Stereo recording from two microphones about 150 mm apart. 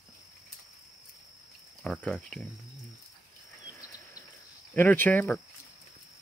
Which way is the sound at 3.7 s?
25° left (ahead or behind).